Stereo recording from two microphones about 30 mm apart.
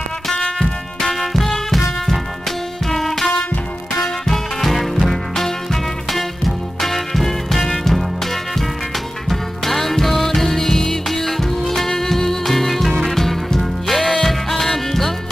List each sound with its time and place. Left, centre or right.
1.2 s music: centre
9.3 s music: centre